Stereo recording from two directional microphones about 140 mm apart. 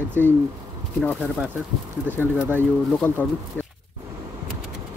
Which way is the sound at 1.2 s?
10° right (ahead or behind).